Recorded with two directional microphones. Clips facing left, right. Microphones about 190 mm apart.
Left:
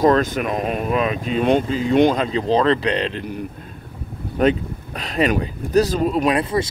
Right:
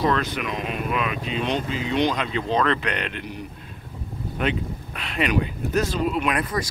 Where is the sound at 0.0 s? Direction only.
45° left (ahead or behind).